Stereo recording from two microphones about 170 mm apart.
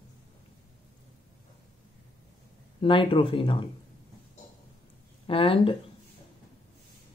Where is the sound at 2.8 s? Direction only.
30° left (ahead or behind).